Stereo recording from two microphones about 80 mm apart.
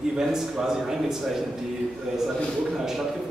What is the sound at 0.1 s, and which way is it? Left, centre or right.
A man's voice, centre.